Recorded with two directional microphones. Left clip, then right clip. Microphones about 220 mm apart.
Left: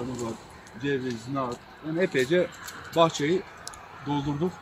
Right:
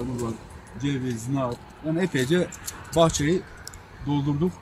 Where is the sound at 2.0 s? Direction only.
50° right (ahead or behind).